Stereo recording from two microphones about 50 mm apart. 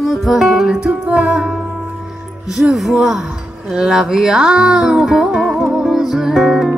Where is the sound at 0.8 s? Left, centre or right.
Right.